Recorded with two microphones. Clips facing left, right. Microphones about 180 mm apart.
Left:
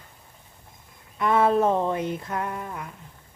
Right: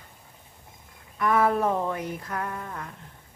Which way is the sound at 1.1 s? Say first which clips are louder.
Left 2 dB; 25° left (ahead or behind).